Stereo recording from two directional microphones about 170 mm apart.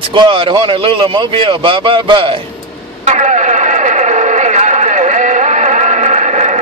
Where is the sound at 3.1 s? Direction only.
45° right (ahead or behind).